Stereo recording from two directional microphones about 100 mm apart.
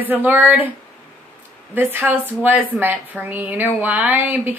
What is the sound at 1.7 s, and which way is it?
A woman's voice, 20° right (ahead or behind).